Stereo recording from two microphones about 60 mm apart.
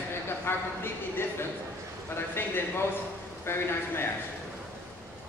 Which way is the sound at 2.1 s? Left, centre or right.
Left.